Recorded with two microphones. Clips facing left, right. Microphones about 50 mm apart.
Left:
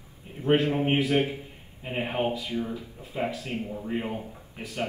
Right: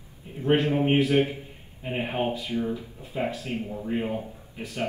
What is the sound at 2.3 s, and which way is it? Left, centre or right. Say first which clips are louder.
Speech: right 1 dB; right.